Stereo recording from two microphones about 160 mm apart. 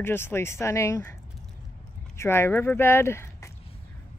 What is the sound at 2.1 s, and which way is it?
Speech, 15° left (ahead or behind).